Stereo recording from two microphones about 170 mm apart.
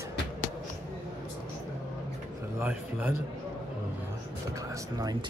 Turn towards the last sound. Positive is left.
turn(degrees=-20)  # may be behind; listen again after turning